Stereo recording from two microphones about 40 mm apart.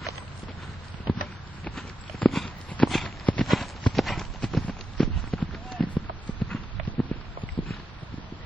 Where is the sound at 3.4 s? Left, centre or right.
Centre.